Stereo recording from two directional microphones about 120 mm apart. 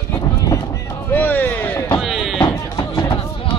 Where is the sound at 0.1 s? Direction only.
30° left (ahead or behind).